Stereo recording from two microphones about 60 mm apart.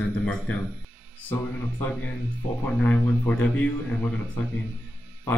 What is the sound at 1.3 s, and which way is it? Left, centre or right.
A man's voice, left.